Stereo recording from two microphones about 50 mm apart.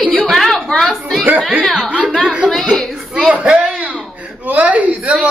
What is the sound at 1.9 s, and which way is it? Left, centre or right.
Speech, right.